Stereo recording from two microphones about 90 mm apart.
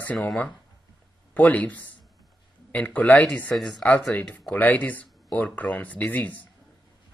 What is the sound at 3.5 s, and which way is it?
Speech, centre (ahead or behind).